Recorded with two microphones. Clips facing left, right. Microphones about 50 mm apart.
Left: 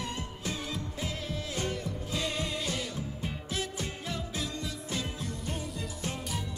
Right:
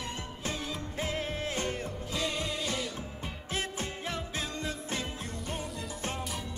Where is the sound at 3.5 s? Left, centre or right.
Right.